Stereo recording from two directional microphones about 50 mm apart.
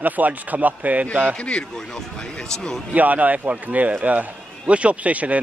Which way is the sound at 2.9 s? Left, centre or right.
Right.